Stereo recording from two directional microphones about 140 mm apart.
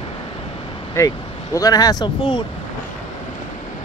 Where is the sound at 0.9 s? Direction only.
25° left (ahead or behind).